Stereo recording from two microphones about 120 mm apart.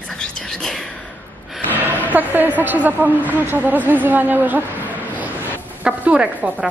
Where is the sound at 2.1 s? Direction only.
15° right (ahead or behind).